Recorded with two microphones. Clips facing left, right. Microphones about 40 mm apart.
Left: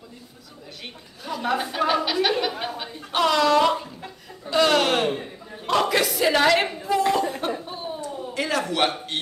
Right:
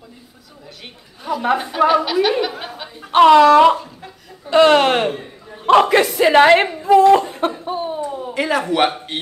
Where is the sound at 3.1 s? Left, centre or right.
Right.